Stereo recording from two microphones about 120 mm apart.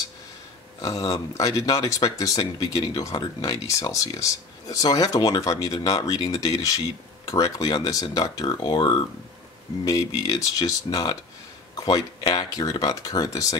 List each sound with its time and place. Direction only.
0.7 s speech: 30° left (ahead or behind)